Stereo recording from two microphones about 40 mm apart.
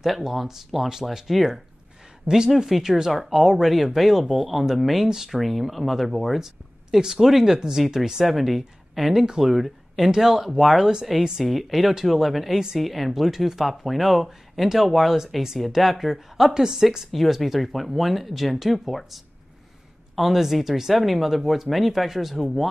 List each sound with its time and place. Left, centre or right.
0.0 s speech: centre
2.2 s speech: centre
2.5 s speech: centre
8.3 s speech: centre
9.2 s speech: centre
16.5 s speech: centre
17.1 s speech: centre